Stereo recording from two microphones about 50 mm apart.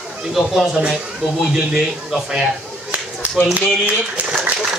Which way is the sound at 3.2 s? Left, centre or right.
Right.